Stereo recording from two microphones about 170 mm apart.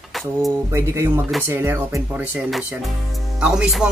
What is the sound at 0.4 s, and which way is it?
Music, 15° right (ahead or behind).